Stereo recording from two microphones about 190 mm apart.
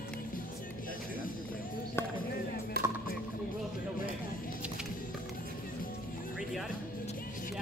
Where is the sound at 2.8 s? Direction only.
55° right (ahead or behind).